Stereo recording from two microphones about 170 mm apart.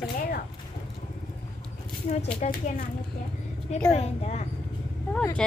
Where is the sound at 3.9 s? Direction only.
40° left (ahead or behind).